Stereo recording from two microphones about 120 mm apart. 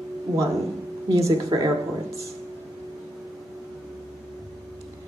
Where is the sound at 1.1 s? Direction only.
25° right (ahead or behind).